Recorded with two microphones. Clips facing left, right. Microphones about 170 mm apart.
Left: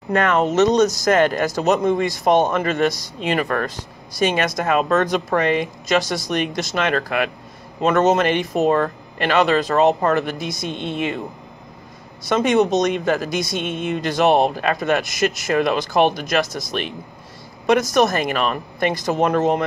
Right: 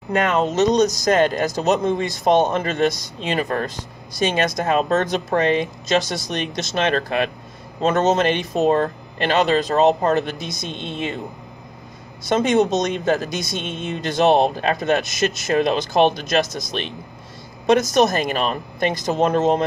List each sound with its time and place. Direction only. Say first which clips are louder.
0.1 s speech: left 2 dB; 15° right (ahead or behind)
12.3 s speech: even; 25° right (ahead or behind)
13.6 s speech: left 4 dB; 15° left (ahead or behind)
13.8 s speech: even; 25° right (ahead or behind)